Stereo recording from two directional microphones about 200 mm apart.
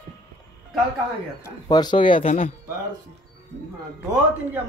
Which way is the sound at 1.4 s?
20° left (ahead or behind).